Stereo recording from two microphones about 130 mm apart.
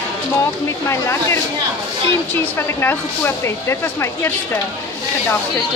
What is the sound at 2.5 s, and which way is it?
Speech, 15° left (ahead or behind).